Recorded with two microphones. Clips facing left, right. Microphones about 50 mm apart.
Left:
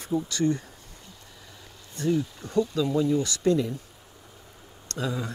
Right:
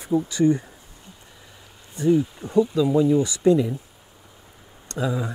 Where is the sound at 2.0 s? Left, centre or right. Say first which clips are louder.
Right 6 dB; centre.